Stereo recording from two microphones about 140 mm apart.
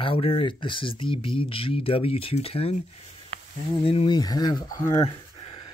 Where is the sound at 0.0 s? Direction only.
40° left (ahead or behind).